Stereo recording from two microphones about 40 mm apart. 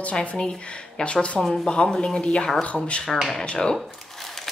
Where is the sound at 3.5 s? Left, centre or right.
Centre.